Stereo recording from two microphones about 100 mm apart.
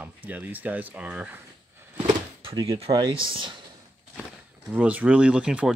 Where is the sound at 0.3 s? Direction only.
15° right (ahead or behind).